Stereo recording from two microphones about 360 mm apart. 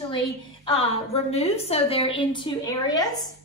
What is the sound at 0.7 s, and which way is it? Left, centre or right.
A woman's voice, centre.